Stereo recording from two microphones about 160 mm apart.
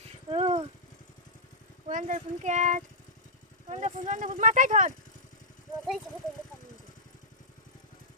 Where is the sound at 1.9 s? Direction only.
50° right (ahead or behind).